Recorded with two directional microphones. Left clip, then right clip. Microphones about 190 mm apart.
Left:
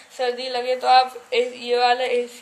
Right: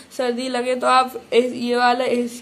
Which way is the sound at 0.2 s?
45° right (ahead or behind).